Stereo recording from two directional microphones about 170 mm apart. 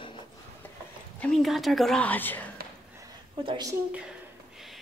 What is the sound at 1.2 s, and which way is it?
Speech, centre (ahead or behind).